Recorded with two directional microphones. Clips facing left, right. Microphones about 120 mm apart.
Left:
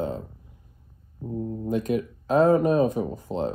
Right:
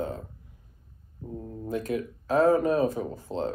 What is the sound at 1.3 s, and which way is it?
Speech, 20° left (ahead or behind).